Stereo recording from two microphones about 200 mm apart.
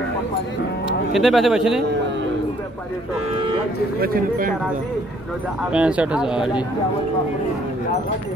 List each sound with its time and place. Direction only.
1.1 s speech: centre (ahead or behind)
4.0 s speech: 45° right (ahead or behind)
5.7 s speech: 5° right (ahead or behind)